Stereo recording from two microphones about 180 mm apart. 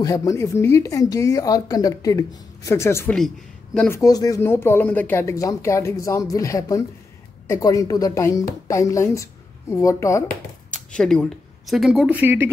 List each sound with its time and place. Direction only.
0.0 s speech: 20° left (ahead or behind)
10.7 s speech: 5° left (ahead or behind); by 12.4 s 10° right (ahead or behind)